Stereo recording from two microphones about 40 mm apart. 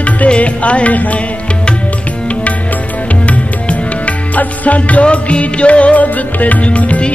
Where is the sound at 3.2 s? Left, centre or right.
Left.